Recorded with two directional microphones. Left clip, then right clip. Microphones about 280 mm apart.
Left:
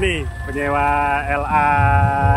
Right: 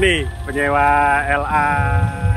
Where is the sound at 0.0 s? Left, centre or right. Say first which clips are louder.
Right 4 dB; centre.